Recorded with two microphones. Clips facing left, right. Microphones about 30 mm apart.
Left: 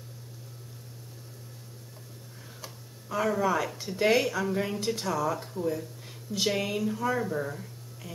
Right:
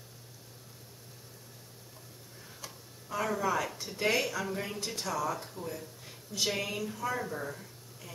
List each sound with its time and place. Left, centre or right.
2.6 s speech: centre